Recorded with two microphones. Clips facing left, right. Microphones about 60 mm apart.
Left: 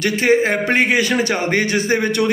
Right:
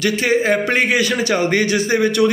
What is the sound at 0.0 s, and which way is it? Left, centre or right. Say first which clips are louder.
A man's voice: left 1 dB; left.